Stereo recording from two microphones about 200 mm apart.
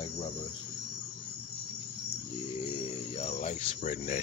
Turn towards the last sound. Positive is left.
turn(degrees=35)  # may be behind; listen again after turning